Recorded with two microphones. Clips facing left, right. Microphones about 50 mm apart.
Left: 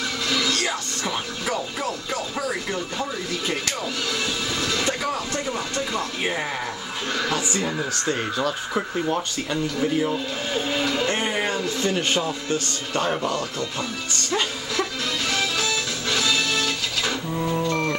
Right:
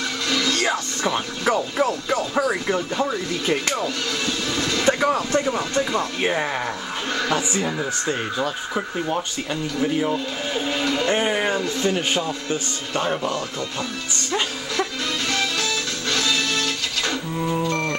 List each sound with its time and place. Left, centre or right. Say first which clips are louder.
0.3 s music: right 3 dB; centre
2.7 s a man's voice: right 5 dB; centre
3.8 s speech: right 2 dB; centre
4.8 s vehicle: right 6 dB; right
5.4 s a man's voice: right 4 dB; centre
11.1 s a man's voice: right 3 dB; centre
14.3 s music: right 1 dB; centre